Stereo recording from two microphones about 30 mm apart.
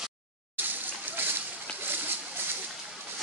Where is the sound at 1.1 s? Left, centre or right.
Right.